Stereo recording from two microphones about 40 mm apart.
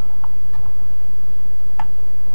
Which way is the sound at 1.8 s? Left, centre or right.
Centre.